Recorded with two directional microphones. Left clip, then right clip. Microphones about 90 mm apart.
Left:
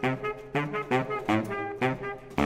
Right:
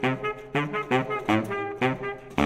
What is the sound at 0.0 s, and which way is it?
Music, 30° right (ahead or behind).